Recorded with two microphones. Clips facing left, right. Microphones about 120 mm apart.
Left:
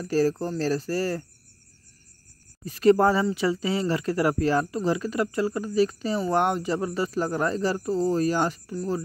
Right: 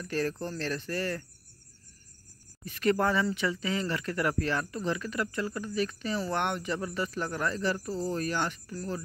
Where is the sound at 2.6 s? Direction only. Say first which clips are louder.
Left 8 dB; 35° left (ahead or behind).